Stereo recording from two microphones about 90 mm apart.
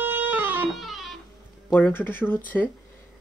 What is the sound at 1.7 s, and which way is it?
Speech, 20° left (ahead or behind).